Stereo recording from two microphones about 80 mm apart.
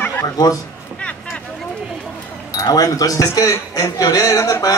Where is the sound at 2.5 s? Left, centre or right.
Left.